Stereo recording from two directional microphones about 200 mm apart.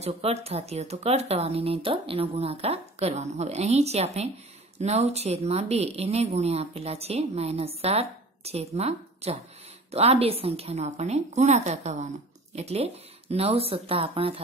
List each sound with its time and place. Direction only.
0.0 s speech: 30° right (ahead or behind)